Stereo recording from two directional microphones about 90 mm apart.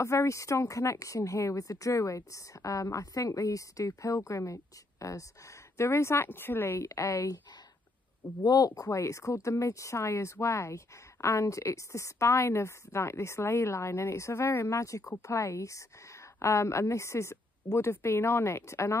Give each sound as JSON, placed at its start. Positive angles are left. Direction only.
{"t": 0.0, "sound": "speech", "side_deg": 35}
{"t": 8.5, "sound": "speech", "side_deg": 45}
{"t": 14.7, "sound": "speech", "side_deg": 35}